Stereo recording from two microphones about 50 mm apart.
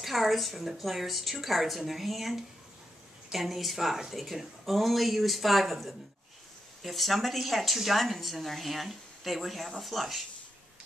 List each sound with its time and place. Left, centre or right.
0.0 s a woman's voice: centre